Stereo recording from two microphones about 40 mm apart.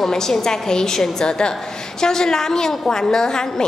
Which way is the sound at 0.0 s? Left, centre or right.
Centre.